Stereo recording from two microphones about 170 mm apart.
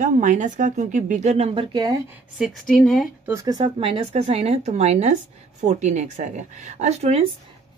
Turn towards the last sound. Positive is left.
turn(degrees=-40)  # may be behind; listen again after turning